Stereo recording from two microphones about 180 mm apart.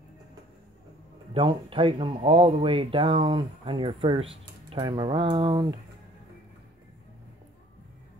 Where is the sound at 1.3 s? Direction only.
30° right (ahead or behind).